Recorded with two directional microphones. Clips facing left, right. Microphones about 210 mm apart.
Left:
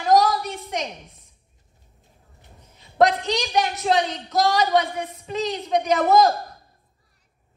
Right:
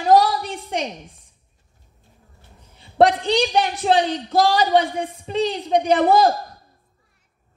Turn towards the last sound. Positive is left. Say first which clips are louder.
# right 2 dB
turn(degrees=-30)  # may be behind; listen again after turning